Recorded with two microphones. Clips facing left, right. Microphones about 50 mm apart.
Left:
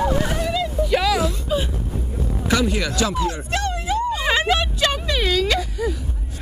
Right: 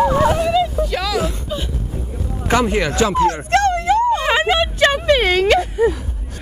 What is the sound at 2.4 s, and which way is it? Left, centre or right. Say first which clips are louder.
Police car: right 5 dB; right.